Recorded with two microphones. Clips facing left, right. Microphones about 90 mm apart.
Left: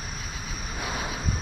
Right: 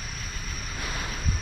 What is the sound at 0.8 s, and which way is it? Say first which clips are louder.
Vehicle: left 3 dB; 10° left (ahead or behind).